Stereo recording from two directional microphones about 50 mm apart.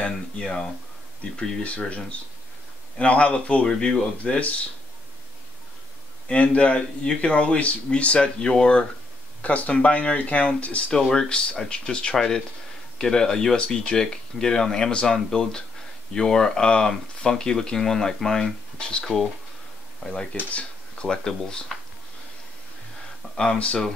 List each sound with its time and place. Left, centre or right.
0.4 s speech: centre
3.6 s speech: centre
4.2 s speech: left
6.2 s speech: left
9.4 s speech: left
10.9 s speech: centre
23.3 s speech: centre